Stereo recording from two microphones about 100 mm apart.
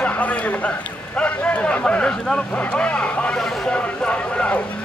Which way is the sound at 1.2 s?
15° left (ahead or behind).